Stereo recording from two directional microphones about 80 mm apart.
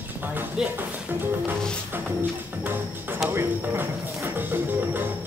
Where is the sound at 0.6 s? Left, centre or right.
Centre.